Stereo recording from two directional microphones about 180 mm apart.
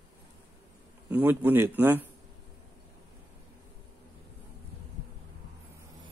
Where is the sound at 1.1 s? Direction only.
10° right (ahead or behind).